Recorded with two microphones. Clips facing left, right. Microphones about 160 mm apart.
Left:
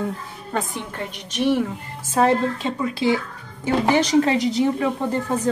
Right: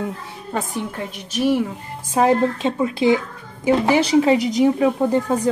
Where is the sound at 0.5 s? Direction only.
5° right (ahead or behind).